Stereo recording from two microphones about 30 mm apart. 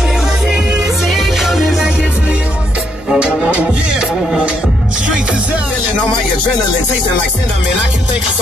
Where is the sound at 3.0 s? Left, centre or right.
Right.